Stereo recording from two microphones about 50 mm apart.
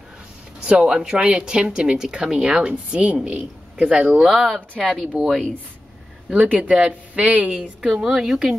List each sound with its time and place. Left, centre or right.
0.7 s a man's voice: centre
5.1 s speech: centre
6.4 s speech: right
6.7 s speech: right
7.8 s a woman's voice: centre